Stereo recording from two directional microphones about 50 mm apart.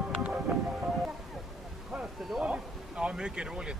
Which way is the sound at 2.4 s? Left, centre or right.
Right.